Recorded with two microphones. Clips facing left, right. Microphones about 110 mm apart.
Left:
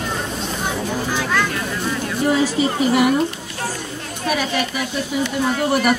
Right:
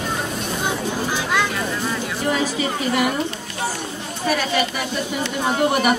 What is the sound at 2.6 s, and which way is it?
Speech, 20° left (ahead or behind).